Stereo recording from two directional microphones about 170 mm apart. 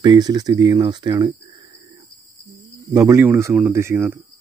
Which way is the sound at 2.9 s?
15° right (ahead or behind).